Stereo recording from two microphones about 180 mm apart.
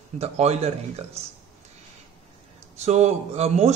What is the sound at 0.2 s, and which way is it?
A man's voice, 35° right (ahead or behind).